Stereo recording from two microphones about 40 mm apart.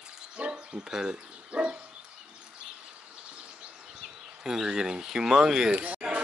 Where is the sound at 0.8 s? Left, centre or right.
Centre.